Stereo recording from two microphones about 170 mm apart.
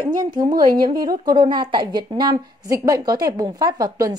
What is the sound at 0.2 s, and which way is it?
A woman's voice, 25° right (ahead or behind).